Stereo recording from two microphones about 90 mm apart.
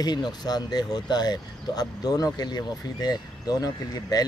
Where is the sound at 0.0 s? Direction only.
50° left (ahead or behind).